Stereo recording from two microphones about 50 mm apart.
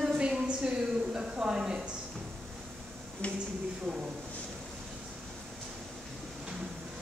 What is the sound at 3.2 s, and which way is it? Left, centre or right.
Speech, left.